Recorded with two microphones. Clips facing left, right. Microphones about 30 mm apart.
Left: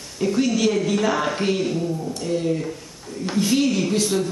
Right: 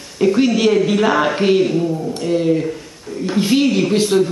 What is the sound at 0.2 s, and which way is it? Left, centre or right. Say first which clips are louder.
Speech: right 6 dB; right.